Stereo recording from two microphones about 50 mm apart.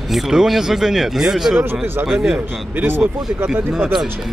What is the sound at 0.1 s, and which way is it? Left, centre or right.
Speech, centre.